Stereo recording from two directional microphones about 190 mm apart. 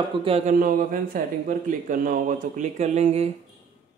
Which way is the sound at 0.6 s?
45° right (ahead or behind).